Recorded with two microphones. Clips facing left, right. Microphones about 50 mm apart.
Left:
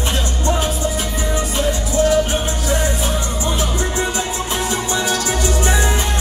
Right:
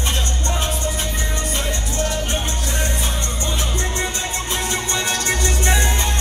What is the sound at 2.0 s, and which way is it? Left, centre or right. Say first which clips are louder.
Music: left 8 dB; left.